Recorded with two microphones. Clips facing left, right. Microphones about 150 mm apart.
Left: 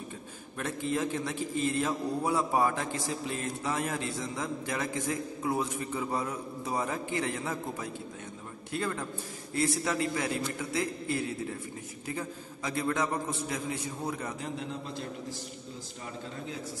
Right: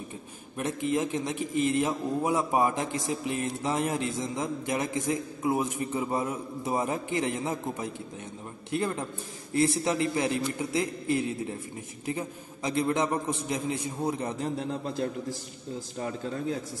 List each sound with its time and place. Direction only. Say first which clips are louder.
0.6 s a man's voice: right 3 dB; 20° right (ahead or behind)